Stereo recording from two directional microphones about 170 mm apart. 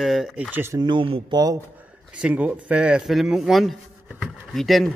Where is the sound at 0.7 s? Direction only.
25° right (ahead or behind).